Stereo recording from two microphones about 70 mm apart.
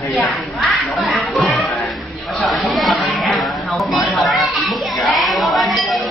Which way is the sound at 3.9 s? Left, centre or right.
Centre.